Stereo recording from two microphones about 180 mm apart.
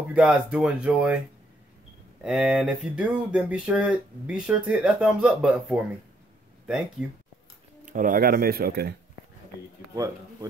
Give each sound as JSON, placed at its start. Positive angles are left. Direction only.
{"t": 0.1, "sound": "speech", "side_deg": -5}
{"t": 2.2, "sound": "speech", "side_deg": -5}
{"t": 7.8, "sound": "speech", "side_deg": -45}
{"t": 9.9, "sound": "speech", "side_deg": -20}